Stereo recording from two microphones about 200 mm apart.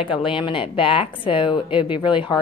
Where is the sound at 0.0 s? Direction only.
25° left (ahead or behind).